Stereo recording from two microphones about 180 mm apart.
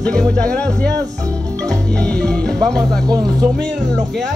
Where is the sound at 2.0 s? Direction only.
5° left (ahead or behind).